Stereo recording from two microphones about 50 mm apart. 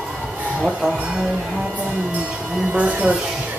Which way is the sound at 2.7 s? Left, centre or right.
Right.